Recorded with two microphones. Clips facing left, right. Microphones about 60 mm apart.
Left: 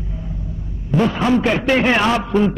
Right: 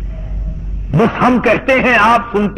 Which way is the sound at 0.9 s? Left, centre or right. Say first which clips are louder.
Right 5 dB; right.